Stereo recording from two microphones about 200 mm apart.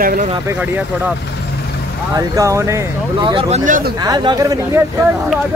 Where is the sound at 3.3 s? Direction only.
35° right (ahead or behind).